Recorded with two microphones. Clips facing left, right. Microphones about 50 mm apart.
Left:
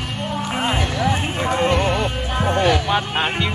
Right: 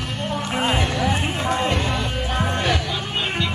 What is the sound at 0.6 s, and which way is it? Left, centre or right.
Speech, centre.